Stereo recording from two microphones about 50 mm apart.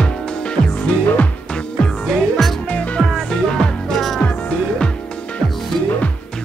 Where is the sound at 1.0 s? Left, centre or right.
Left.